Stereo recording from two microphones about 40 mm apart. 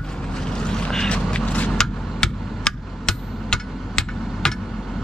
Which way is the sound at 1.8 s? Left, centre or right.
Centre.